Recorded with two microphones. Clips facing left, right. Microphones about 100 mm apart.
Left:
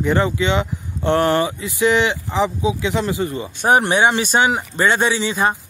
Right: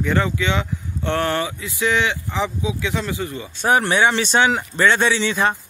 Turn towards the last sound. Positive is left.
turn(degrees=10)  # may be behind; listen again after turning